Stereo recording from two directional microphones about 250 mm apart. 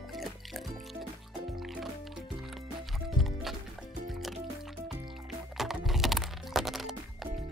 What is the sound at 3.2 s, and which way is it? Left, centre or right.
Music, centre.